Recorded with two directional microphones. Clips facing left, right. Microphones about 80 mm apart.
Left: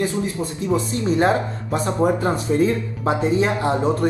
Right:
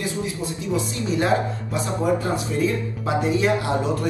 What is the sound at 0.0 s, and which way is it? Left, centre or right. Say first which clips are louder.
Speech: left 4 dB; left.